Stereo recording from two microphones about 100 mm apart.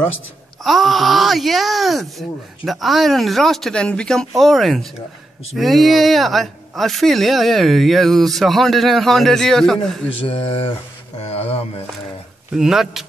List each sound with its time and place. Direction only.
0.7 s speech: centre (ahead or behind)
10.2 s speech: 75° left (ahead or behind)
11.3 s music: 80° left
12.5 s speech: 5° right (ahead or behind)